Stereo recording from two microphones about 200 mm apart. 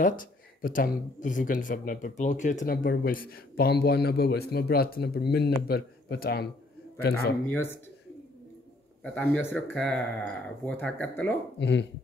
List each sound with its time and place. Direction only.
0.0 s speech: 45° left (ahead or behind)
7.4 s speech: 10° left (ahead or behind)
9.0 s speech: 5° left (ahead or behind)
11.5 s speech: 60° left (ahead or behind)